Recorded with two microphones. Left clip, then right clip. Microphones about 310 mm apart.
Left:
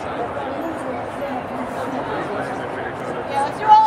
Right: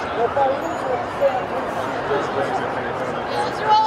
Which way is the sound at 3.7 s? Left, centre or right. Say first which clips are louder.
Left 5 dB; left.